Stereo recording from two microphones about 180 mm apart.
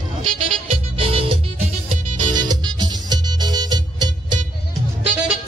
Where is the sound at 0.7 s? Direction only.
30° right (ahead or behind).